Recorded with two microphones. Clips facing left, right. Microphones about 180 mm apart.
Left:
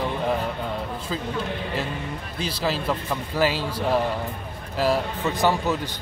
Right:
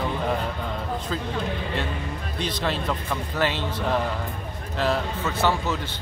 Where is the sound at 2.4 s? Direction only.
5° left (ahead or behind).